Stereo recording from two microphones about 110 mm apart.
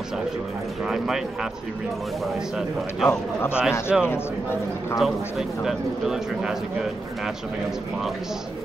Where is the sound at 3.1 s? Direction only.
20° left (ahead or behind).